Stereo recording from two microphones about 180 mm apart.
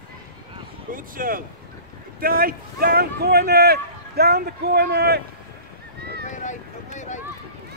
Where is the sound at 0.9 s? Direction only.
50° right (ahead or behind).